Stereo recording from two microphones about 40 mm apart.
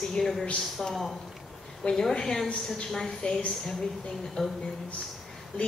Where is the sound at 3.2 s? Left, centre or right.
Left.